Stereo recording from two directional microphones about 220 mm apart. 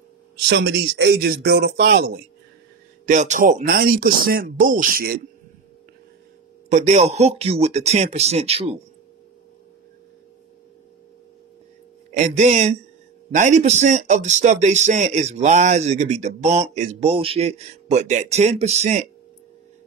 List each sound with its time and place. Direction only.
0.5 s speech: 50° right (ahead or behind)
6.7 s speech: 30° right (ahead or behind)
12.1 s speech: 35° right (ahead or behind)